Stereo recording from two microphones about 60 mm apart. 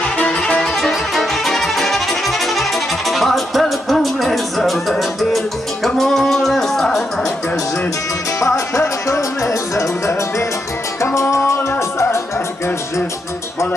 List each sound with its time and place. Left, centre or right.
0.2 s music: centre
8.4 s music: left